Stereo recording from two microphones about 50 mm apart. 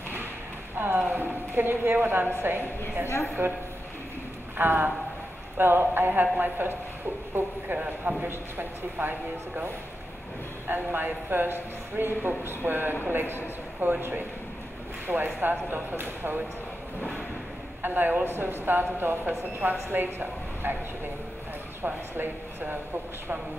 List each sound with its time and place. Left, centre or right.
0.7 s a woman's voice: right
4.6 s a woman's voice: right
9.0 s speech: right
10.7 s a woman's voice: right
17.8 s a woman's voice: right
21.8 s speech: right